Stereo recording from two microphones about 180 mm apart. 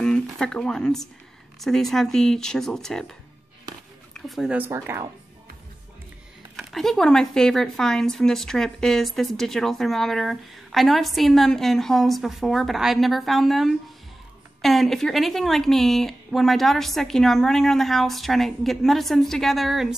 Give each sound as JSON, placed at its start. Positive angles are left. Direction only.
{"t": 0.0, "sound": "a woman's voice", "side_deg": 5}
{"t": 4.6, "sound": "speech", "side_deg": -15}
{"t": 6.5, "sound": "speech", "side_deg": 0}